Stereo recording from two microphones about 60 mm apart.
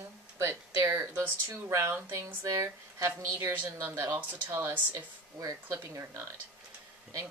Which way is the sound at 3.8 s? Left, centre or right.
Right.